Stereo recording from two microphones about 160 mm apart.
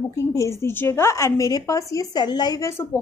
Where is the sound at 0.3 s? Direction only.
20° left (ahead or behind).